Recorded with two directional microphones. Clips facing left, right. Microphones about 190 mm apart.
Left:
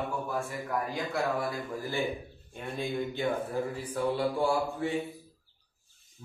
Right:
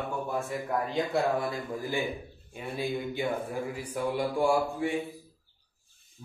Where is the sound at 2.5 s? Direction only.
10° right (ahead or behind).